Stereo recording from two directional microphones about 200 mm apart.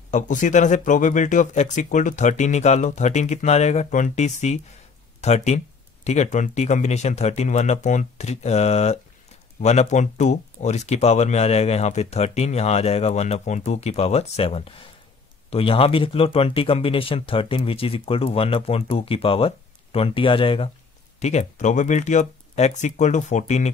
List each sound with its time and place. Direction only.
0.1 s speech: 40° left (ahead or behind)